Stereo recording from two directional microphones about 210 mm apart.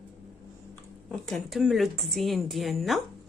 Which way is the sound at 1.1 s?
5° left (ahead or behind).